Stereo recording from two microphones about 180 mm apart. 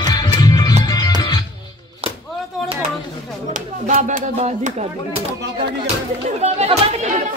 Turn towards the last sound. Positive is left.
turn(degrees=-35)  # may be behind; listen again after turning